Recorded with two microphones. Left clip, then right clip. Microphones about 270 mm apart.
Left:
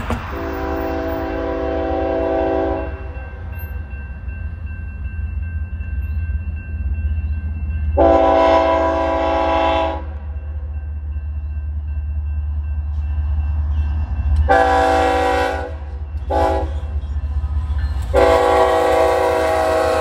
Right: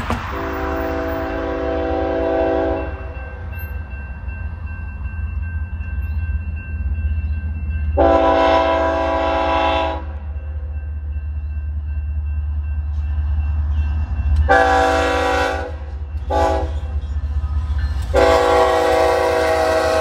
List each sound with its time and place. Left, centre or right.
0.0 s train: right
0.5 s train: left
7.9 s train: left
13.7 s train: left